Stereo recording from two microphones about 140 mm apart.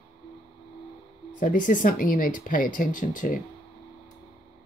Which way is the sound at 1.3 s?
70° left (ahead or behind).